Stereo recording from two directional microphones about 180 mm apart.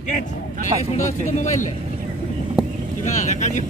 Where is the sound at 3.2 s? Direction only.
40° left (ahead or behind).